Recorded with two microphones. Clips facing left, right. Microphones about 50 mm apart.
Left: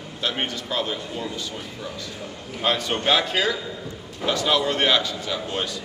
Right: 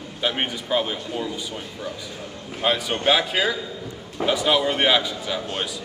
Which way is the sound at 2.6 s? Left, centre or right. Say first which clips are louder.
Right 1 dB; centre.